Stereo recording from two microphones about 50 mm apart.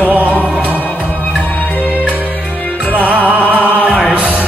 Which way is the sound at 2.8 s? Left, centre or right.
Left.